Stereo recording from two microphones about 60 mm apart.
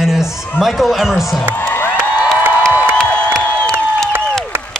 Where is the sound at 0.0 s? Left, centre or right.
Centre.